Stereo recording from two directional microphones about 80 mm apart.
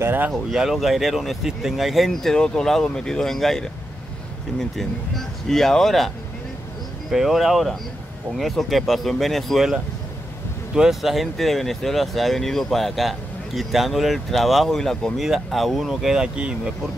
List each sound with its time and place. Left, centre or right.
0.0 s speech: right
0.3 s speech: centre